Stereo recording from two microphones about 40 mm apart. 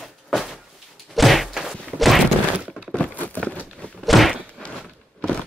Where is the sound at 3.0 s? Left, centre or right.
Left.